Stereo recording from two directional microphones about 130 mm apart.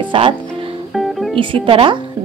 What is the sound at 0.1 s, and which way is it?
Speech, 40° right (ahead or behind).